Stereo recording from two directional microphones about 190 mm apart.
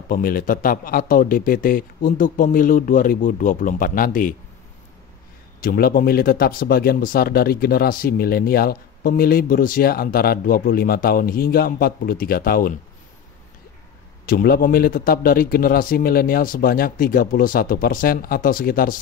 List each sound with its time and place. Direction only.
0.1 s speech: 50° left (ahead or behind)
5.6 s speech: 50° left (ahead or behind)
14.2 s speech: 50° left (ahead or behind)